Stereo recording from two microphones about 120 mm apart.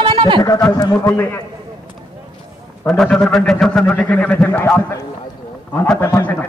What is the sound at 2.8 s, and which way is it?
A man's voice, 5° left (ahead or behind).